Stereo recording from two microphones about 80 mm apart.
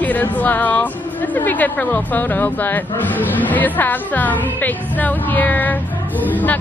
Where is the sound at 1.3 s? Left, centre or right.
Left.